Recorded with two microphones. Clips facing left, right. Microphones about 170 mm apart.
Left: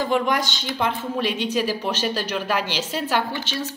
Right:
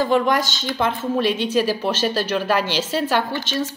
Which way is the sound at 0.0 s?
15° left (ahead or behind).